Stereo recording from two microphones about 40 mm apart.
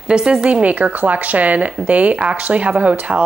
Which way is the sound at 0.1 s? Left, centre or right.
Centre.